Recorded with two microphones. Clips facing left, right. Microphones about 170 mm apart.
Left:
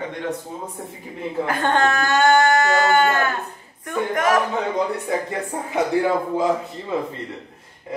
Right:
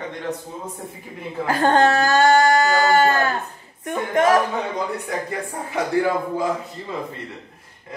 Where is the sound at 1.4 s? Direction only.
35° right (ahead or behind).